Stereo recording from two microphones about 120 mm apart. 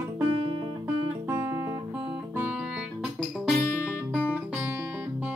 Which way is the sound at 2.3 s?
10° right (ahead or behind).